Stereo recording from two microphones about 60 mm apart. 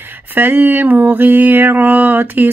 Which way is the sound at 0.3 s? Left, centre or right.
Right.